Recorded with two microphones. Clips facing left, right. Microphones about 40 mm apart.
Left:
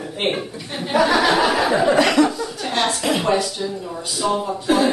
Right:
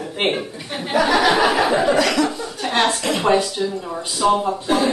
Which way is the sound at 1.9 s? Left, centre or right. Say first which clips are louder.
Left 2 dB; left.